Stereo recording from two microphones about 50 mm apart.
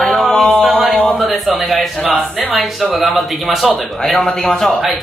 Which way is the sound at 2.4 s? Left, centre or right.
Centre.